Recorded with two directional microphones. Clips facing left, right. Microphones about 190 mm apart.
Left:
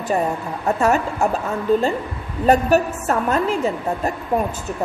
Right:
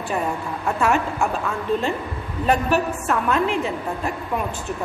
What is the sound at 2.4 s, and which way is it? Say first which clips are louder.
A woman's voice: left 4 dB; 40° left (ahead or behind).